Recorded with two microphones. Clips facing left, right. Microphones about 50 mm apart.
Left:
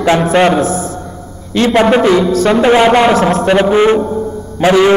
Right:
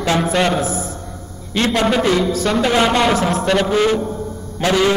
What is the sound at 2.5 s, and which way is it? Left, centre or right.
Speech, left.